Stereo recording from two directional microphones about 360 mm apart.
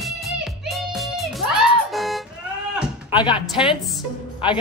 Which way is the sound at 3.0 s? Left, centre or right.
Centre.